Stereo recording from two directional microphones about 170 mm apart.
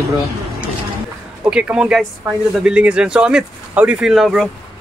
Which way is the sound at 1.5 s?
5° right (ahead or behind).